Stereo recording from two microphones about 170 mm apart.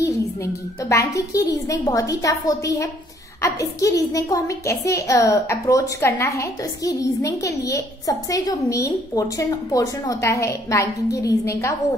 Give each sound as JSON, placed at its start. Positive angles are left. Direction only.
{"t": 0.0, "sound": "a woman's voice", "side_deg": 15}